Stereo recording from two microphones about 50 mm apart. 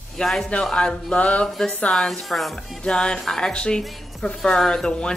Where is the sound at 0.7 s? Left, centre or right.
Left.